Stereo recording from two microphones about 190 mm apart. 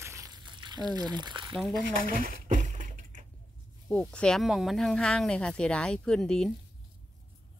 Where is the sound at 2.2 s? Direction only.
45° right (ahead or behind).